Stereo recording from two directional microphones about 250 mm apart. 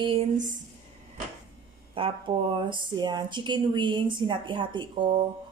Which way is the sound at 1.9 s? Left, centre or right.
Centre.